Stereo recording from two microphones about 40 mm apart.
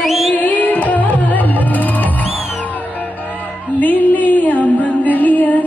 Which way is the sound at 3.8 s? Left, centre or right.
Left.